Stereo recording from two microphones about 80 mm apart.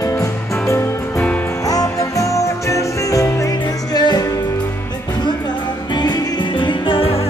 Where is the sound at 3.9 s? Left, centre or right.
Left.